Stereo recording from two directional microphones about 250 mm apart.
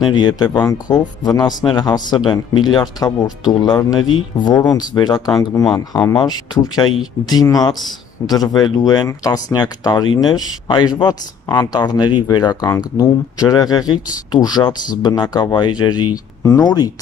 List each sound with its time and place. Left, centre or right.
0.0 s speech: centre